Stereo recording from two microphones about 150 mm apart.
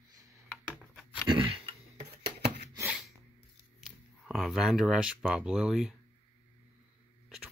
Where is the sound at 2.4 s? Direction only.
90° right.